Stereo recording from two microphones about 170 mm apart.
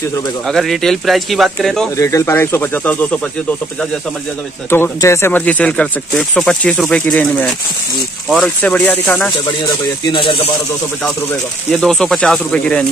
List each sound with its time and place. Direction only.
0.5 s speech: centre (ahead or behind)
2.0 s speech: 20° left (ahead or behind)
4.6 s speech: 15° left (ahead or behind)
10.0 s speech: 30° left (ahead or behind)
11.7 s speech: 5° left (ahead or behind)